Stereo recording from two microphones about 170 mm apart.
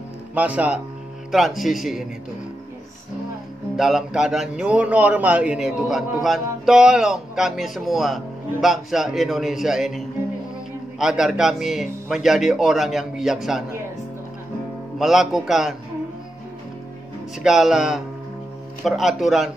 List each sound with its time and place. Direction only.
0.3 s a man's voice: 10° right (ahead or behind)
3.7 s a man's voice: centre (ahead or behind)
15.0 s a man's voice: centre (ahead or behind)
17.4 s a man's voice: 5° right (ahead or behind)